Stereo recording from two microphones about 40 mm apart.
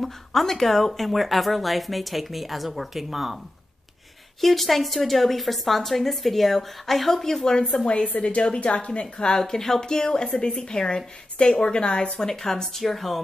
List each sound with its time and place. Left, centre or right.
0.0 s speech: centre
4.4 s speech: centre
7.7 s a woman's voice: left
9.4 s speech: centre